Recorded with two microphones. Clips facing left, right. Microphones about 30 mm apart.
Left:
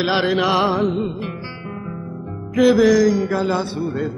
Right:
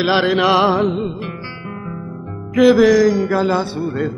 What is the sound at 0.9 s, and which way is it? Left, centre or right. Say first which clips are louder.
Music: right 1 dB; centre.